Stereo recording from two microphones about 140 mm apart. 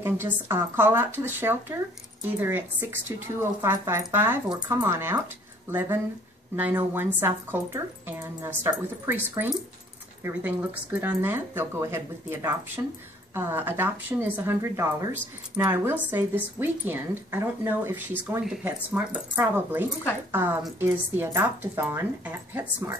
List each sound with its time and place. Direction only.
0.0 s speech: 15° right (ahead or behind)